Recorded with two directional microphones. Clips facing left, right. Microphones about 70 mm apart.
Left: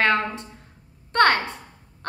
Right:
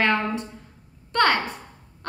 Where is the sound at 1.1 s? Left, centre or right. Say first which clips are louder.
Left 2 dB; left.